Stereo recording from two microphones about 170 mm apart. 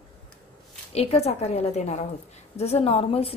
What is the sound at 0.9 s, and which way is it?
A woman's voice, 35° left (ahead or behind).